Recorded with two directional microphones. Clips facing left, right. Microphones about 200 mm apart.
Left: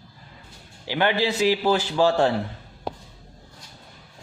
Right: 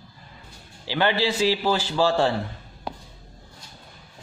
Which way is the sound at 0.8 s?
15° left (ahead or behind).